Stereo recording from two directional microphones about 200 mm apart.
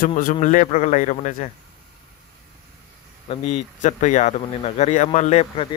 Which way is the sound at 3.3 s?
35° left (ahead or behind).